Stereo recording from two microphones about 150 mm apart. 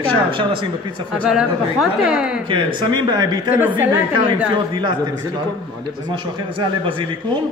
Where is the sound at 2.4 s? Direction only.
35° right (ahead or behind).